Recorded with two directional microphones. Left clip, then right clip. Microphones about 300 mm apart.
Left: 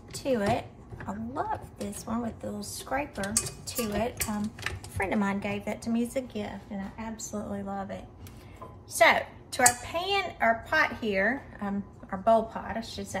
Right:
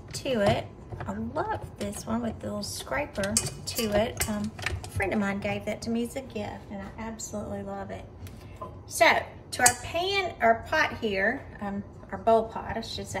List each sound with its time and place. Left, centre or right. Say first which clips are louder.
0.1 s a woman's voice: right 2 dB; centre
7.5 s a child's voice: even; centre